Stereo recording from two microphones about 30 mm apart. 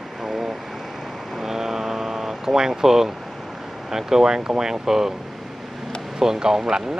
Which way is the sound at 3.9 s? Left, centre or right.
Centre.